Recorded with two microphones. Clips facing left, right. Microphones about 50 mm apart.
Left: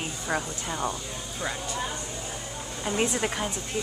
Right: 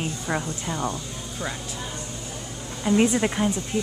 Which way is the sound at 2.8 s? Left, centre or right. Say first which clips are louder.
Right 7 dB; centre.